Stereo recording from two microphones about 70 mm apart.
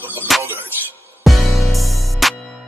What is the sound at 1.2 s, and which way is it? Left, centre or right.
Music, centre.